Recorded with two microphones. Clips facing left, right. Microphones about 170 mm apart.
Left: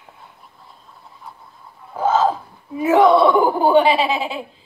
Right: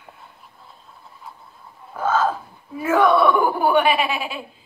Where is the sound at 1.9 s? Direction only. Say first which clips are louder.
Left 3 dB; 20° left (ahead or behind).